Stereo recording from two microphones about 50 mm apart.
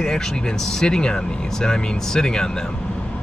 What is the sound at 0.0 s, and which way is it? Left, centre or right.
Speech, centre.